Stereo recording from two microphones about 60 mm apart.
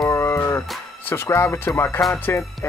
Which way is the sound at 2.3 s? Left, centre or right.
Left.